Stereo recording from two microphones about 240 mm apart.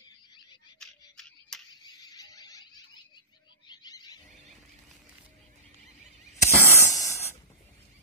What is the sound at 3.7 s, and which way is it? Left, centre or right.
Wild animals, centre.